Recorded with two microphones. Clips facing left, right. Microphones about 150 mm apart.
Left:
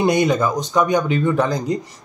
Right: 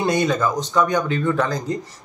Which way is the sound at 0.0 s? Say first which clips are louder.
Left 3 dB; 15° left (ahead or behind).